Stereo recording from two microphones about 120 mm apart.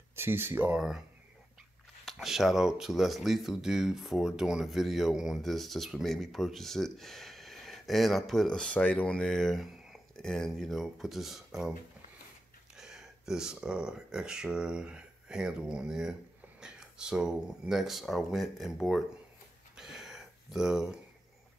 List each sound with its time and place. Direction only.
0.1 s speech: 20° right (ahead or behind)
0.7 s speech: 5° right (ahead or behind)
2.0 s speech: 5° right (ahead or behind)
12.7 s speech: 5° right (ahead or behind)
19.8 s a sound: 5° right (ahead or behind)